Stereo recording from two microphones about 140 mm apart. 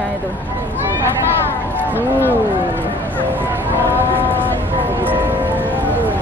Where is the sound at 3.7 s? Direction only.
15° right (ahead or behind).